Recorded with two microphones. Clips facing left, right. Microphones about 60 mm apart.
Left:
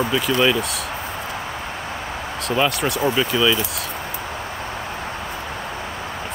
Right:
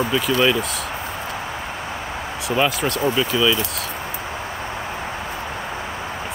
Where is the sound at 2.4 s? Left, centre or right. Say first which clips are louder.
Even; centre.